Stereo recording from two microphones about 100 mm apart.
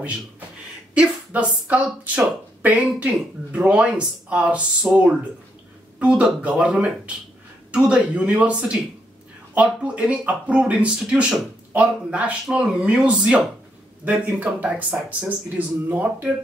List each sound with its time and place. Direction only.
0.9 s speech: 15° right (ahead or behind)